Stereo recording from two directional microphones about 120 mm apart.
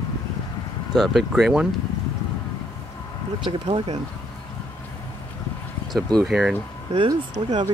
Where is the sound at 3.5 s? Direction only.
50° right (ahead or behind).